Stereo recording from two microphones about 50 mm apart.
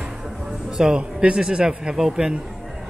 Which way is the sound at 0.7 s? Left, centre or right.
Centre.